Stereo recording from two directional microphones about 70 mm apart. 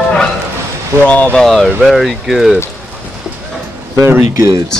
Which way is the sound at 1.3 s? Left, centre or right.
Centre.